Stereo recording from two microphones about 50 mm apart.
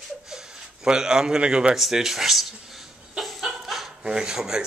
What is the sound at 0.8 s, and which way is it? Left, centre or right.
Speech, centre.